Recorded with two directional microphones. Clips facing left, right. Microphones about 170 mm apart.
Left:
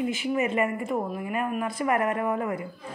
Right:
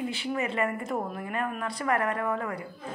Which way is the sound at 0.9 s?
5° left (ahead or behind).